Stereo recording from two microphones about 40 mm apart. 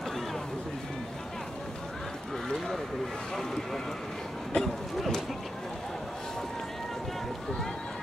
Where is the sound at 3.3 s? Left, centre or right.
Centre.